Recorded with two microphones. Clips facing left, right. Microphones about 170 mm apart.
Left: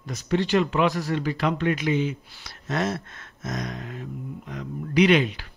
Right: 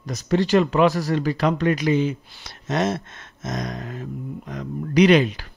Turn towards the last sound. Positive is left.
turn(degrees=-40)  # may be behind; listen again after turning